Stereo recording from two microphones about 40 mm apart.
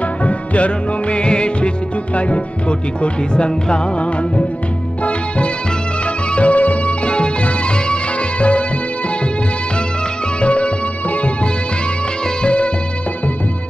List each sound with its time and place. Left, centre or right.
0.2 s music: left
3.0 s speech: left
6.3 s music: left
10.4 s music: left